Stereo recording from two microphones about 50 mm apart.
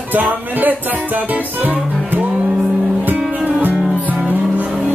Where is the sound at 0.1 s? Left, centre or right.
Right.